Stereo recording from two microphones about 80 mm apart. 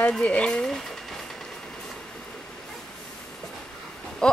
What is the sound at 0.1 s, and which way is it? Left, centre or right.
Speech, centre.